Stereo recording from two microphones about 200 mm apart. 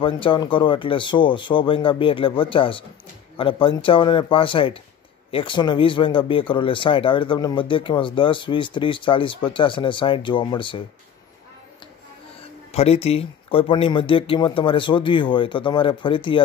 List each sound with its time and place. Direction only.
0.0 s speech: 25° left (ahead or behind)
12.7 s speech: 30° left (ahead or behind)